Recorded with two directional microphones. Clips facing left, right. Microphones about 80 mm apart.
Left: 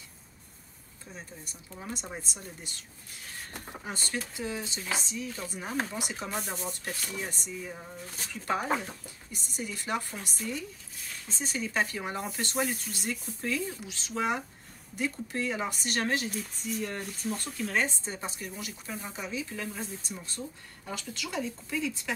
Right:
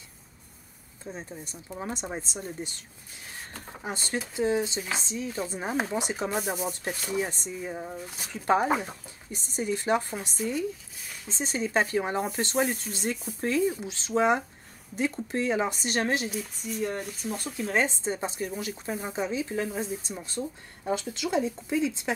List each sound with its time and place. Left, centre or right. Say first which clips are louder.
1.1 s speech: right 4 dB; right
3.8 s speech: right 4 dB; right
6.3 s speech: right 5 dB; centre
7.0 s speech: right 7 dB; right
8.6 s speech: right 4 dB; centre
9.3 s speech: right 8 dB; right
16.3 s speech: right 1 dB; centre
17.6 s speech: right 5 dB; centre
18.5 s speech: right 7 dB; right
19.8 s speech: right 6 dB; right